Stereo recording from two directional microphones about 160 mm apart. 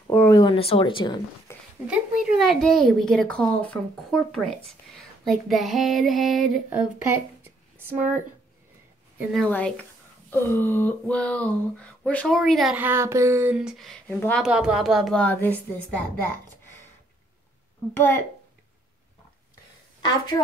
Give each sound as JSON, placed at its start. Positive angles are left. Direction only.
{"t": 0.3, "sound": "speech", "side_deg": 25}
{"t": 0.6, "sound": "speech", "side_deg": 35}
{"t": 1.9, "sound": "a woman's voice", "side_deg": 0}
{"t": 7.4, "sound": "a sound", "side_deg": -15}
{"t": 9.3, "sound": "a woman's voice", "side_deg": 5}
{"t": 10.3, "sound": "a sound", "side_deg": 15}
{"t": 12.8, "sound": "child singing", "side_deg": -15}
{"t": 13.6, "sound": "a woman's voice", "side_deg": 0}
{"t": 17.9, "sound": "a sound", "side_deg": 15}
{"t": 20.0, "sound": "a woman's voice", "side_deg": 30}